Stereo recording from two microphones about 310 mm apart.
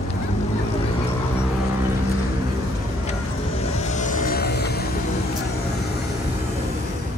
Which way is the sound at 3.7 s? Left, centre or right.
Left.